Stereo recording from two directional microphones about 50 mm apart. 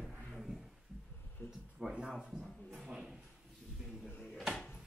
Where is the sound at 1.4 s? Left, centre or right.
Left.